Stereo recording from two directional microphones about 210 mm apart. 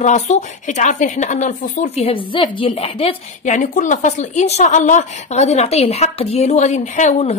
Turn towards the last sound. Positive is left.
turn(degrees=35)  # may be behind; listen again after turning